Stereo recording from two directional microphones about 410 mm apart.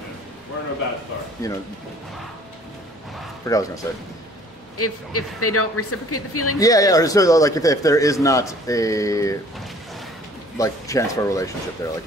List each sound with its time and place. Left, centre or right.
1.4 s a man's voice: centre
3.4 s a man's voice: centre
4.7 s speech: left
6.6 s a man's voice: centre
10.6 s a man's voice: centre